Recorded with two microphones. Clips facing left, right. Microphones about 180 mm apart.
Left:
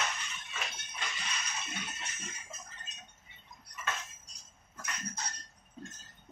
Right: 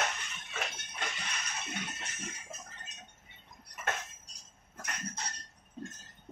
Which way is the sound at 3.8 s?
55° right (ahead or behind).